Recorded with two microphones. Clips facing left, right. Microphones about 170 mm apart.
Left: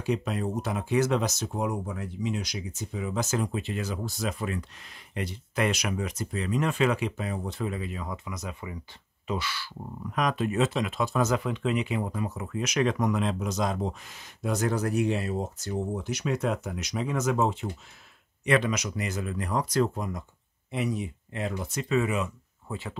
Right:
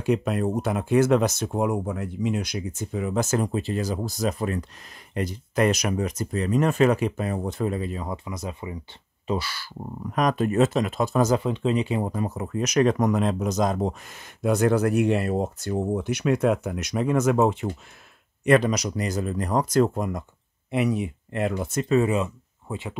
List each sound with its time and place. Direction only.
0.0 s speech: 55° right (ahead or behind)
18.4 s speech: 40° right (ahead or behind)
20.7 s speech: 65° right (ahead or behind); by 22.3 s 30° right (ahead or behind)
22.7 s speech: 20° right (ahead or behind)